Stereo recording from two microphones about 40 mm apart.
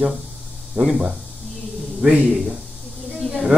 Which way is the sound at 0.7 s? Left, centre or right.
Centre.